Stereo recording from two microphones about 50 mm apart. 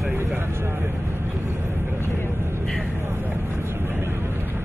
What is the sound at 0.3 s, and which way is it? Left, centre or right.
Vehicle, right.